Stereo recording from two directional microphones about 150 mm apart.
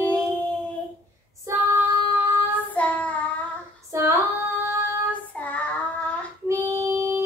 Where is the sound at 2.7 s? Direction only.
10° left (ahead or behind).